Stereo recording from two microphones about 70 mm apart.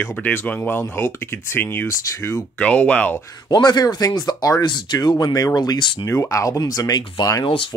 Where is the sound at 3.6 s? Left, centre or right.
Left.